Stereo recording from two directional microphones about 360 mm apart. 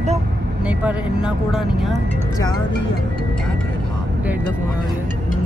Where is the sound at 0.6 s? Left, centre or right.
Centre.